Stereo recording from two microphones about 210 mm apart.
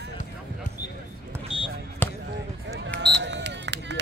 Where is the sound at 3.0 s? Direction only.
55° right (ahead or behind).